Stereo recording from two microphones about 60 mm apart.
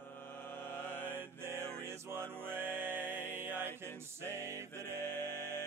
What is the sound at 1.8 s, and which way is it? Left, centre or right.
Music, right.